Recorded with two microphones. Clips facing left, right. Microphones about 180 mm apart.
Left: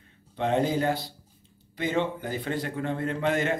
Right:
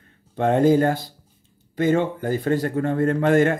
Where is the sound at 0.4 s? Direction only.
50° right (ahead or behind).